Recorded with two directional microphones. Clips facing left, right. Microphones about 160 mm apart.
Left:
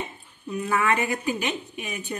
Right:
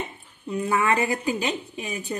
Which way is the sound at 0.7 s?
35° right (ahead or behind).